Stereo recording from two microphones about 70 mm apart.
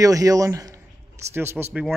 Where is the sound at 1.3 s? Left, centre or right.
Right.